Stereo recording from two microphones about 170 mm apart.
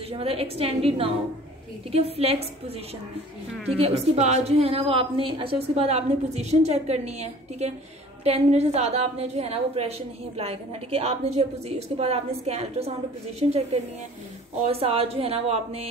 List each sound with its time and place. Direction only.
0.1 s a woman's voice: 35° right (ahead or behind)
3.6 s a woman's voice: 35° right (ahead or behind)